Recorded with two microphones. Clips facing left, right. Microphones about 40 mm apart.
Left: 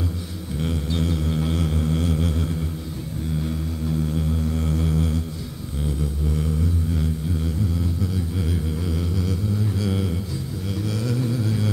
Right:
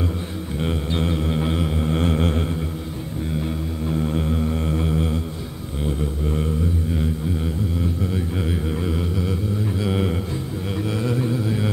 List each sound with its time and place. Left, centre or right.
0.6 s music: right
3.3 s music: right
5.9 s a sound: right
8.0 s mantra: right